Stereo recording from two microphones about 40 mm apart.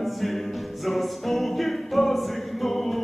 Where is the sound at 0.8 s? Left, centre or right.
Centre.